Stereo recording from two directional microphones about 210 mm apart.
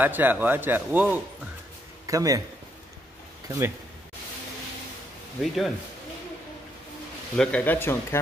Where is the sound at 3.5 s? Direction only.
10° right (ahead or behind).